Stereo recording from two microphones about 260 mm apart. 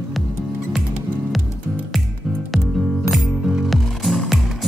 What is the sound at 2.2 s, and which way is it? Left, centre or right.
Music, centre.